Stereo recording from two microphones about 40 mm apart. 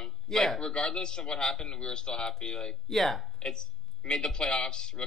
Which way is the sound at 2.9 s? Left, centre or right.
Centre.